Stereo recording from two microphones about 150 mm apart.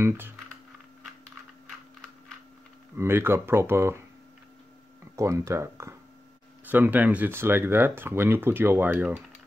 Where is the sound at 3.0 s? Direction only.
15° right (ahead or behind).